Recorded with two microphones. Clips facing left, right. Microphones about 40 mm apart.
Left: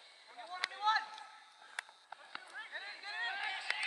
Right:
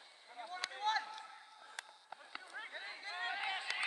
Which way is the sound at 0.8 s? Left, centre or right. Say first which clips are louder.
Left 4 dB; left.